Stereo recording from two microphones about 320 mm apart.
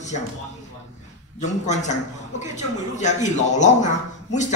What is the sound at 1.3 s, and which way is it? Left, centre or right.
Speech, left.